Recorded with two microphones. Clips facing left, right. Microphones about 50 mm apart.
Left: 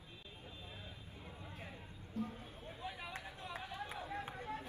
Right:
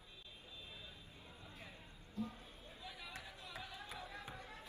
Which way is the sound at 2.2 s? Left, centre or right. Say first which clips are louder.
Left 3 dB; left.